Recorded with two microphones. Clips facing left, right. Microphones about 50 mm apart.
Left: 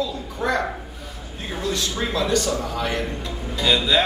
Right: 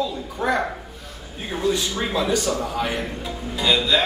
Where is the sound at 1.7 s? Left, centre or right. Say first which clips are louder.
Left 1 dB; centre.